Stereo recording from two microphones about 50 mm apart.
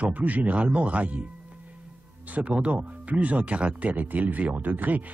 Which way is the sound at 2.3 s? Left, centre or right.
Right.